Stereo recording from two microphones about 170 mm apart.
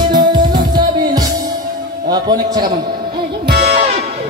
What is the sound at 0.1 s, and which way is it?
Music, 25° right (ahead or behind).